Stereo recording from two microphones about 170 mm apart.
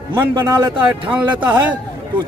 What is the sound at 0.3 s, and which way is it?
Speech, 25° right (ahead or behind).